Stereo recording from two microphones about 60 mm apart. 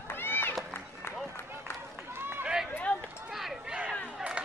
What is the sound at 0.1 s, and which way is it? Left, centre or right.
Run, left.